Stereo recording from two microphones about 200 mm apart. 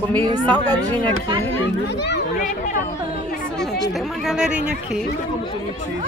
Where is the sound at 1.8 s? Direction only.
60° left (ahead or behind).